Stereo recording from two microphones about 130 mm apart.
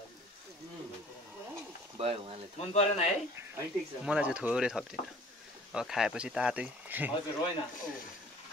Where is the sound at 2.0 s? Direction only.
45° right (ahead or behind).